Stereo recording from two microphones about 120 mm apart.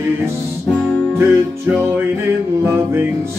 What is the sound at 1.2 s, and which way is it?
Music, 20° right (ahead or behind).